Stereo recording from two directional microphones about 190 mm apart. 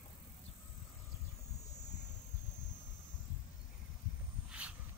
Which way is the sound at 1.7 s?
60° left (ahead or behind).